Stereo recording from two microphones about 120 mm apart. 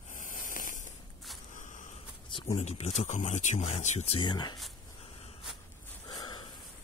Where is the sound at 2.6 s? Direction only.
65° left (ahead or behind).